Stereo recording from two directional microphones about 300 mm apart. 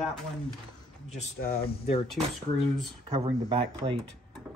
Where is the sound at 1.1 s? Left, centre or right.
Left.